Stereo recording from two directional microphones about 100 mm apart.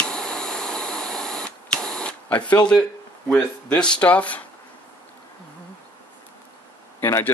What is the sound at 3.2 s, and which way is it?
Speech, 10° left (ahead or behind).